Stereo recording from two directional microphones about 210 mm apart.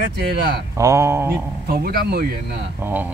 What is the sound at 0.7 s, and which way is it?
Speech, 15° right (ahead or behind).